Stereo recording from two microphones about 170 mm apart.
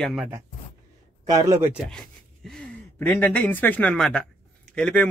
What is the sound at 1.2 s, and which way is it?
Speech, 20° right (ahead or behind).